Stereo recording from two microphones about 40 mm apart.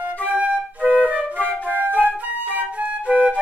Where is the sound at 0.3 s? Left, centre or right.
Right.